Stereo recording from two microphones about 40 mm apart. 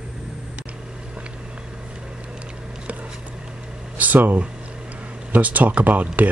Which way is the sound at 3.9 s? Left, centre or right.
Right.